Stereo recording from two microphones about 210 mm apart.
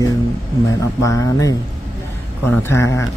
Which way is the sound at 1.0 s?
15° left (ahead or behind).